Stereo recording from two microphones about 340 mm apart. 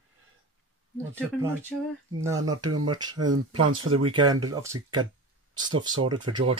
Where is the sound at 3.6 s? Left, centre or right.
Right.